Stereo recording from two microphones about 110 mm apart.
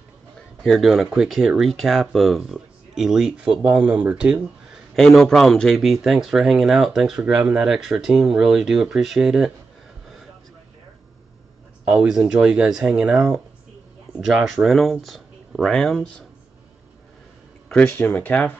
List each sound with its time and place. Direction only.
0.7 s speech: centre (ahead or behind)
4.9 s speech: 5° left (ahead or behind)
11.8 s speech: 10° right (ahead or behind)
17.6 s speech: 10° left (ahead or behind)